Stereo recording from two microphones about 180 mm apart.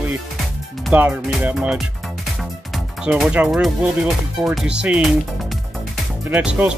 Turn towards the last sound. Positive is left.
turn(degrees=-5)  # may be behind; listen again after turning